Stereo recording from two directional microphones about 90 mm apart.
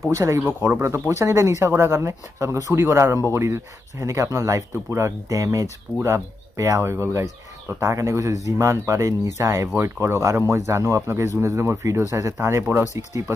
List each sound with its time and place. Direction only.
0.1 s speech: 35° right (ahead or behind)
0.4 s speech: 25° right (ahead or behind)